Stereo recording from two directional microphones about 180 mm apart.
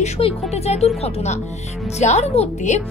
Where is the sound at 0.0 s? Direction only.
35° left (ahead or behind).